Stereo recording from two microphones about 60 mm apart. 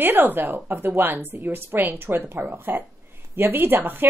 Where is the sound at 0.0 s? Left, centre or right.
Right.